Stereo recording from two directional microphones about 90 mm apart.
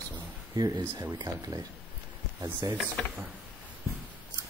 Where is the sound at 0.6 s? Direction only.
45° right (ahead or behind).